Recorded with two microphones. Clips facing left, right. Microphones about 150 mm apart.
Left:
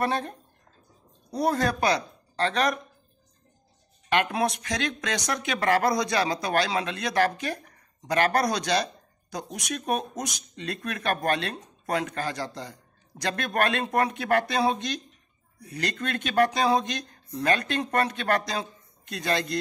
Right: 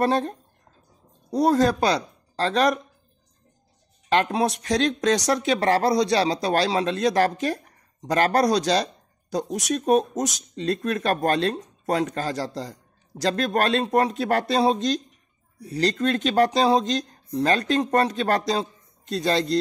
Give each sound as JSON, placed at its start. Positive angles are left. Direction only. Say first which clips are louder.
{"t": 0.0, "sound": "speech", "louder": "right 5 dB", "side_deg": -35}
{"t": 1.5, "sound": "speech", "louder": "right 4 dB", "side_deg": -35}
{"t": 4.1, "sound": "speech", "louder": "right 3 dB", "side_deg": -30}